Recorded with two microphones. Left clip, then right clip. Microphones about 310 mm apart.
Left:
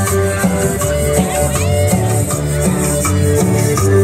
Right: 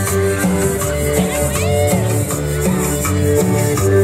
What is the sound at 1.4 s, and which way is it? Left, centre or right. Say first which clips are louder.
Music: even; right.